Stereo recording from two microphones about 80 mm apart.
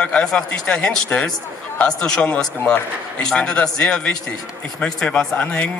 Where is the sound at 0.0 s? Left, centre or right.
Centre.